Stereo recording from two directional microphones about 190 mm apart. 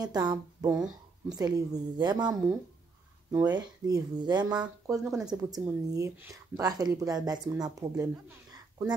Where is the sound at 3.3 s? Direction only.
20° right (ahead or behind).